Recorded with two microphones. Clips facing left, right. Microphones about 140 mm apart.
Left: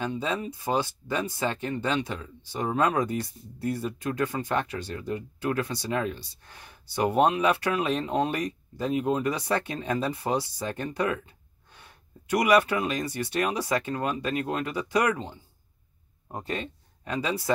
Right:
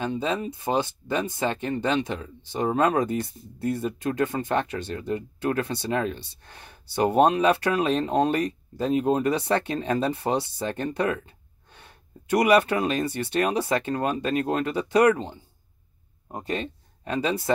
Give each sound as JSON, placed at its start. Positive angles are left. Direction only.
{"t": 0.0, "sound": "speech", "side_deg": -25}
{"t": 16.3, "sound": "speech", "side_deg": -20}